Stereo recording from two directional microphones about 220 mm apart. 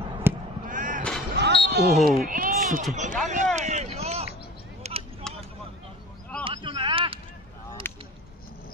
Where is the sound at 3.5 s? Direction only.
30° right (ahead or behind).